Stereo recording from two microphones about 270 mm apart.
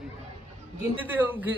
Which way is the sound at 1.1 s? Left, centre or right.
Centre.